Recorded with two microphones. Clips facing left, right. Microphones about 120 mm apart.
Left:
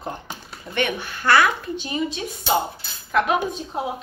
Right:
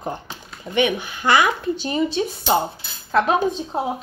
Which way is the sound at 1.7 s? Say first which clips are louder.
Right 4 dB; 35° right (ahead or behind).